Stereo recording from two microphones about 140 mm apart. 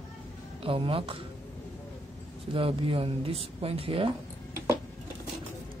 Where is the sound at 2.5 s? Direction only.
40° right (ahead or behind).